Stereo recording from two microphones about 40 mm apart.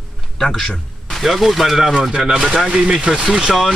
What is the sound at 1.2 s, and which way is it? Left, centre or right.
Speech, centre.